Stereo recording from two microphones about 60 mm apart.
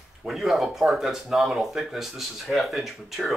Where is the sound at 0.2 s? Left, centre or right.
Centre.